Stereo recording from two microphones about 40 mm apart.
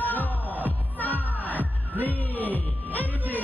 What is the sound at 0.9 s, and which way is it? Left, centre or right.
Music, left.